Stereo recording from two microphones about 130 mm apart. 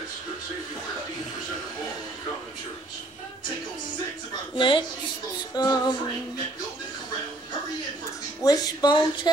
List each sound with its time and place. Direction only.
4.6 s a woman's voice: 40° left (ahead or behind)
8.5 s a woman's voice: 30° left (ahead or behind)